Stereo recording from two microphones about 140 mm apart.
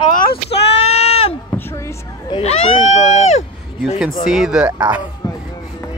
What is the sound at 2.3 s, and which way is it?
Speech, 50° left (ahead or behind).